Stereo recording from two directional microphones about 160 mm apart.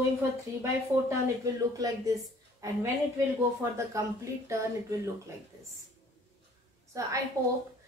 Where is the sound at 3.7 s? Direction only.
20° right (ahead or behind).